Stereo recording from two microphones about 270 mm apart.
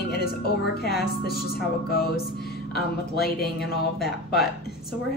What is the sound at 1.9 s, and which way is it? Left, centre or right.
Speech, left.